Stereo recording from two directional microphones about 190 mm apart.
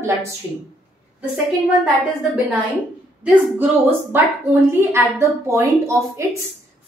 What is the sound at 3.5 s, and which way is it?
A woman's voice, 10° right (ahead or behind).